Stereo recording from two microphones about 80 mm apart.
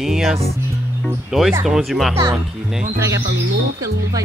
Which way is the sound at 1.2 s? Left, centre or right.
Centre.